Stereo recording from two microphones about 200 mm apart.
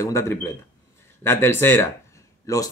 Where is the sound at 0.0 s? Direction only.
15° left (ahead or behind).